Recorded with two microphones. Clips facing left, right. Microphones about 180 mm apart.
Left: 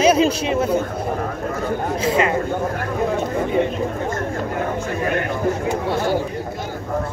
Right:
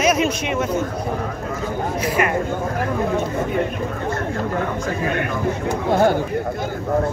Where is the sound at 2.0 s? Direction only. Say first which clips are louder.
Left 2 dB; 25° left (ahead or behind).